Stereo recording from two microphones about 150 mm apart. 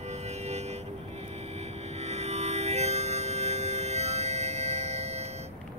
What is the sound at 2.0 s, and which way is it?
Music, 45° right (ahead or behind).